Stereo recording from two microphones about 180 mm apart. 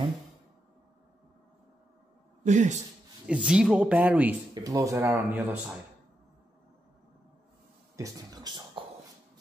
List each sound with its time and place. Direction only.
2.4 s a man's voice: 40° right (ahead or behind)
3.3 s speech: 5° right (ahead or behind)
7.9 s a sound: 20° right (ahead or behind)